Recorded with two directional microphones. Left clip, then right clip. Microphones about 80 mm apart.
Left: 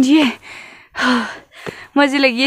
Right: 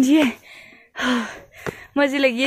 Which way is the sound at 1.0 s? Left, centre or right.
Left.